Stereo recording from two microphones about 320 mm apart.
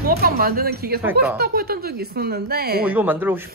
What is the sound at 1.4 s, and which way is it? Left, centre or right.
Speech, right.